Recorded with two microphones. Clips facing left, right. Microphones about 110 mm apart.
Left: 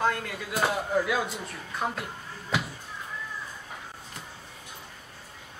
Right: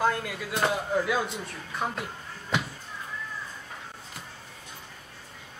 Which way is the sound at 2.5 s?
Centre (ahead or behind).